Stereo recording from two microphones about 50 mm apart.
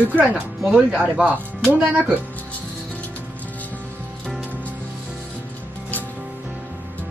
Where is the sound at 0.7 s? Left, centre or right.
Right.